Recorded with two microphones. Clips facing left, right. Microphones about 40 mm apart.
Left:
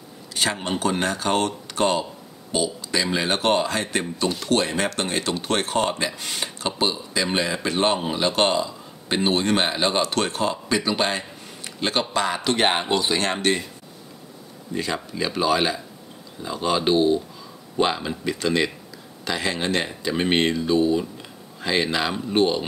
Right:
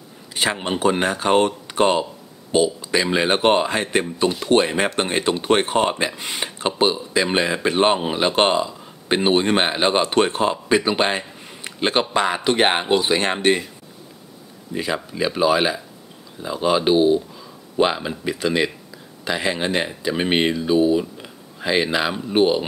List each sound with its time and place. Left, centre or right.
0.3 s speech: centre
14.7 s speech: centre